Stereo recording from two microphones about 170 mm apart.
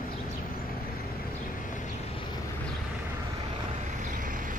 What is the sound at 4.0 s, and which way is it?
Vehicle, 50° right (ahead or behind).